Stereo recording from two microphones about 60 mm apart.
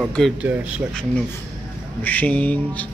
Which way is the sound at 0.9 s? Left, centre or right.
Centre.